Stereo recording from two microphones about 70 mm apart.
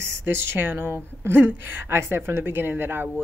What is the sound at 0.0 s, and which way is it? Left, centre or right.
Speech, right.